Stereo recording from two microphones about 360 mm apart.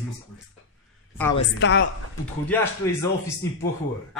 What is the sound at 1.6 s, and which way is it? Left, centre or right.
Speech, left.